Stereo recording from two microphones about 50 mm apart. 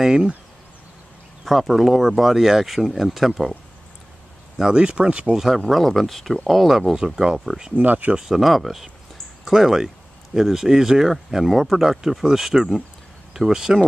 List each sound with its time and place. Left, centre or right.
0.0 s speech: centre
1.4 s speech: centre
4.6 s speech: centre
5.3 s speech: centre
7.7 s speech: right
8.2 s speech: centre